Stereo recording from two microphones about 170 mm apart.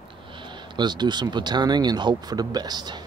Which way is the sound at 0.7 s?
25° right (ahead or behind).